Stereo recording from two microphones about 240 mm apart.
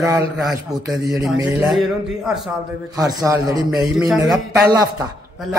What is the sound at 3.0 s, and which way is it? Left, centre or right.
Speech, centre.